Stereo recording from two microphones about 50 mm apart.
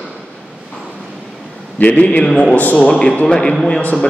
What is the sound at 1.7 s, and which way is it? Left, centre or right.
A man's voice, left.